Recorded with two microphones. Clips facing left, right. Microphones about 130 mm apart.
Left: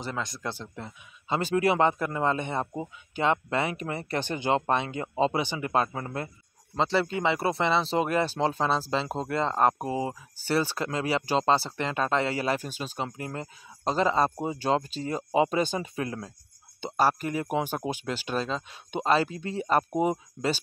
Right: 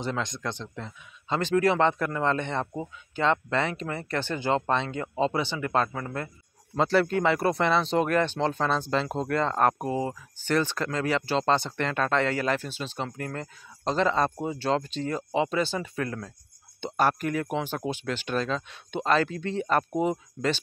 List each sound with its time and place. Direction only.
0.0 s a man's voice: 5° left (ahead or behind); by 6.3 s 25° left (ahead or behind)
6.8 s speech: centre (ahead or behind); by 16.3 s 20° left (ahead or behind)
16.8 s speech: 5° left (ahead or behind)